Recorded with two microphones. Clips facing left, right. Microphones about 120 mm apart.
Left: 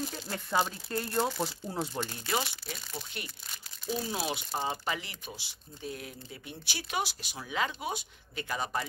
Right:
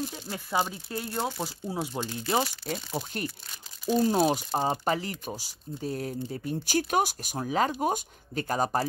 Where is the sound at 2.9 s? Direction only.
45° right (ahead or behind).